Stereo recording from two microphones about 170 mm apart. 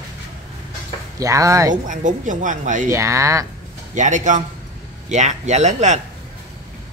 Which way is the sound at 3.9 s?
45° right (ahead or behind).